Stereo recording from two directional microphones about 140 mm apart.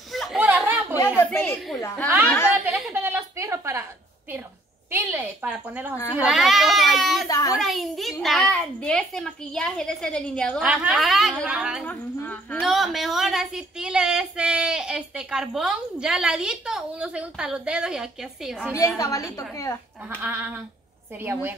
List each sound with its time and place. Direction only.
0.1 s a sound: centre (ahead or behind)
0.9 s a woman's voice: 15° left (ahead or behind)
2.5 s a sound: 10° right (ahead or behind)
5.2 s speech: 5° right (ahead or behind)
7.2 s a woman's voice: 25° left (ahead or behind)
7.5 s speech: centre (ahead or behind)
10.7 s speech: 10° right (ahead or behind)
11.8 s a woman's voice: 10° left (ahead or behind)
12.6 s speech: centre (ahead or behind)
18.9 s a woman's voice: 25° left (ahead or behind)
20.2 s speech: 15° right (ahead or behind)